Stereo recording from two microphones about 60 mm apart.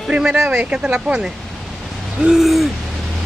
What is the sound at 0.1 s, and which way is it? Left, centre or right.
Speech, centre.